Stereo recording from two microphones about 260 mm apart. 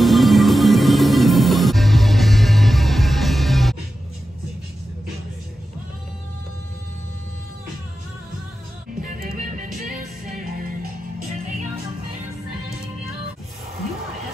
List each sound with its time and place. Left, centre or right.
0.0 s music: centre
9.0 s music: right